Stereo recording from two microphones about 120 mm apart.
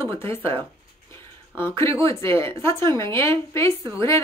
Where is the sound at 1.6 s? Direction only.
20° left (ahead or behind).